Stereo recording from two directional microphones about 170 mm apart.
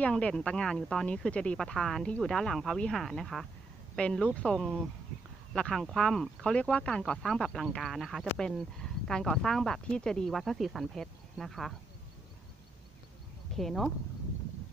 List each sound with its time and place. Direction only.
0.0 s speech: 5° left (ahead or behind)
13.6 s speech: centre (ahead or behind)